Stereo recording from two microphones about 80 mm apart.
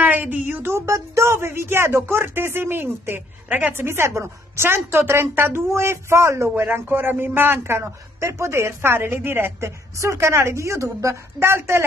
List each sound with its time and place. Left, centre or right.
0.0 s speech: right
3.8 s speech: right
6.5 s speech: right